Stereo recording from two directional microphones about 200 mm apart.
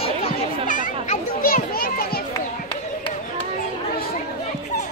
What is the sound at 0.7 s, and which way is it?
Children playing, 40° left (ahead or behind).